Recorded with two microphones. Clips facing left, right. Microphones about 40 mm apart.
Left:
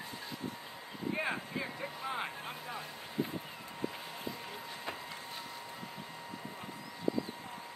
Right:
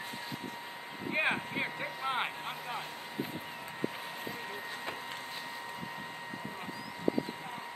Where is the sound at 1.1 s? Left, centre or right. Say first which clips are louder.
Right 5 dB; right.